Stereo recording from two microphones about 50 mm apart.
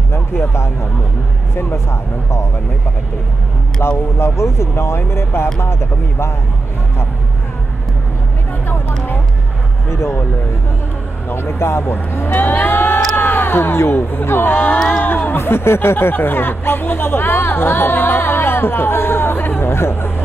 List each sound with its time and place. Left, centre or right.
0.1 s speech: left
3.8 s speech: left
9.8 s speech: left
11.2 s speech: left
12.4 s cattle: left
13.1 s speech: left